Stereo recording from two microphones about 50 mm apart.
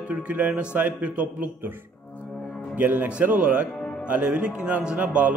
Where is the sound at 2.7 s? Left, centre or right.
Right.